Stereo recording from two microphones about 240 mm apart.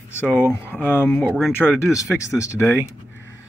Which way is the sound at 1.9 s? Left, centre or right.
Centre.